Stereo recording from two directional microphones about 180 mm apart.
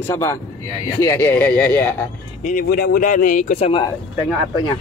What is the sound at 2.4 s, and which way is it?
Speech, 50° left (ahead or behind).